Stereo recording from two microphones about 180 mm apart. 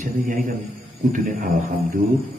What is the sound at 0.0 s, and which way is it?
A man's voice, 45° right (ahead or behind).